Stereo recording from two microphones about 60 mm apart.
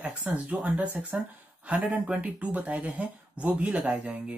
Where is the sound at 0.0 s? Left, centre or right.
Centre.